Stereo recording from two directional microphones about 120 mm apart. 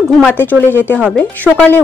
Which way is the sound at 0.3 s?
15° left (ahead or behind).